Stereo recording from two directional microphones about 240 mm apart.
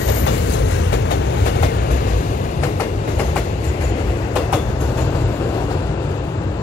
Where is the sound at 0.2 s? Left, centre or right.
Left.